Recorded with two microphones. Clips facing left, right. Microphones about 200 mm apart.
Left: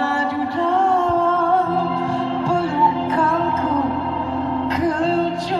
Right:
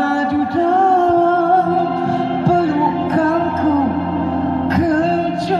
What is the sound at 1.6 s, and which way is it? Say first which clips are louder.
Music: right 4 dB; 40° right (ahead or behind).